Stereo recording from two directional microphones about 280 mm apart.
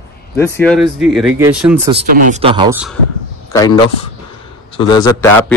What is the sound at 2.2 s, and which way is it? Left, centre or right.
Speech, right.